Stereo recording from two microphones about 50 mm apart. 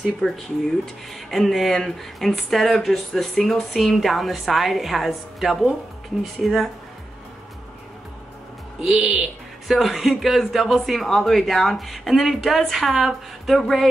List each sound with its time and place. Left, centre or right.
0.2 s speech: centre
1.3 s speech: centre
8.8 s speech: centre
9.7 s speech: centre